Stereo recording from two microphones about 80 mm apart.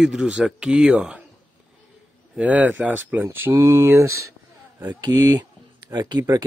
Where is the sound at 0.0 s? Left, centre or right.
Centre.